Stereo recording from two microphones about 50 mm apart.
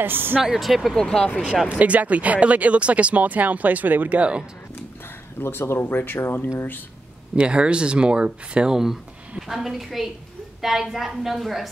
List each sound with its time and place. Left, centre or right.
0.0 s speech: right
0.4 s a woman's voice: centre
0.9 s speech: centre
1.7 s speech: right
4.2 s speech: right
5.4 s speech: left
7.3 s a woman's voice: right; by 11.7 s centre